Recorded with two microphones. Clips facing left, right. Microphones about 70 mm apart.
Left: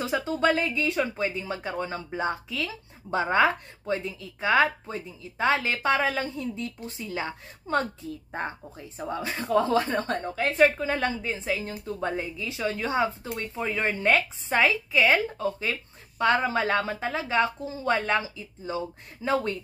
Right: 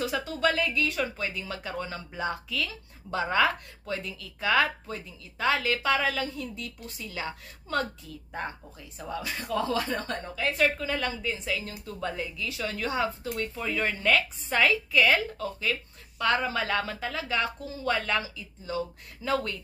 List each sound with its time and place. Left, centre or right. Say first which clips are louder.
0.0 s a woman's voice: left 2 dB; left
10.8 s a woman's voice: left 3 dB; left